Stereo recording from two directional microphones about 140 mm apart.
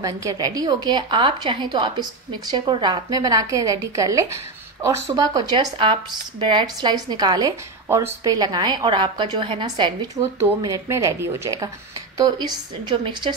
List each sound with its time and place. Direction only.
0.0 s a woman's voice: 25° right (ahead or behind)
10.6 s a woman's voice: 25° right (ahead or behind)
12.9 s a woman's voice: 35° right (ahead or behind)